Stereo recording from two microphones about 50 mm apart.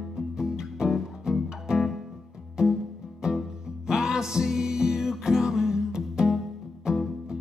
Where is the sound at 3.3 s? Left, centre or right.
Centre.